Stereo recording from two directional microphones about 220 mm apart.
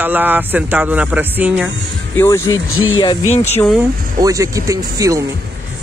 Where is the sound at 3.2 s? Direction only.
30° left (ahead or behind).